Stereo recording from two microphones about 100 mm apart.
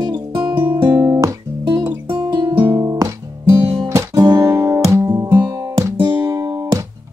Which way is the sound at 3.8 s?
35° right (ahead or behind).